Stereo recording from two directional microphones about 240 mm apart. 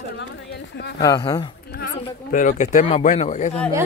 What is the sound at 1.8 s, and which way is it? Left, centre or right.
Speech, left.